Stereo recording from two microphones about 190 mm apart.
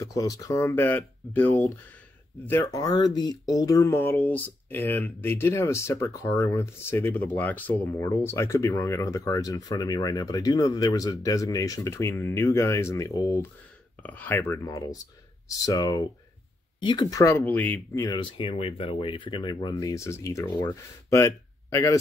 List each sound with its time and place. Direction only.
0.0 s speech: 15° left (ahead or behind)